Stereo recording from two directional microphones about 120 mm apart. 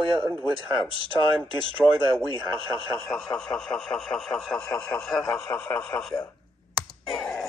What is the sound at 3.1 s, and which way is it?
Speech, 5° left (ahead or behind).